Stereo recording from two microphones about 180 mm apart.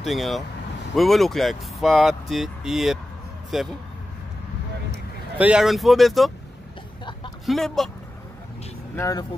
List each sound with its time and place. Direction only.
0.0 s speech: centre (ahead or behind)
5.4 s speech: 5° right (ahead or behind)
7.4 s speech: centre (ahead or behind)
8.9 s speech: 20° left (ahead or behind)